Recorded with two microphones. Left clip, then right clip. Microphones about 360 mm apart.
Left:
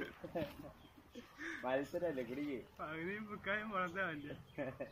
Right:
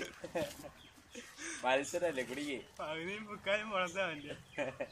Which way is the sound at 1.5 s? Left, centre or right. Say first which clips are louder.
Right 6 dB; right.